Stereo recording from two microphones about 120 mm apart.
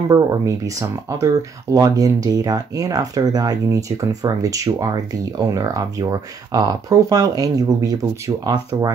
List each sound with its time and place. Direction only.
0.1 s speech: 30° right (ahead or behind)